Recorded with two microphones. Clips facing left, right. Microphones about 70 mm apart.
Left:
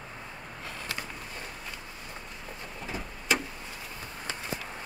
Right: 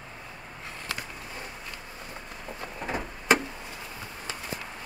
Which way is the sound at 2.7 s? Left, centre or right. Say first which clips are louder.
Right 6 dB; right.